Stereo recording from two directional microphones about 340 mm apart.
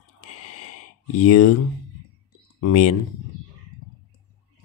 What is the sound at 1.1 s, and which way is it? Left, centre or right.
Speech, left.